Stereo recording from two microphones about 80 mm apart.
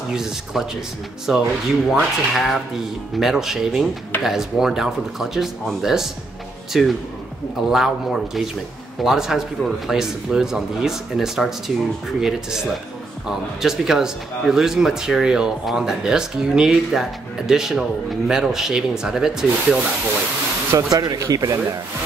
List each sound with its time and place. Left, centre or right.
0.1 s speech: centre
20.7 s speech: right